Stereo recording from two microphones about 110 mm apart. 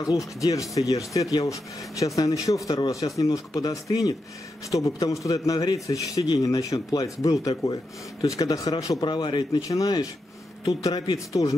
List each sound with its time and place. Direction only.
0.4 s speech: 30° left (ahead or behind)
9.0 s a man's voice: 45° left (ahead or behind)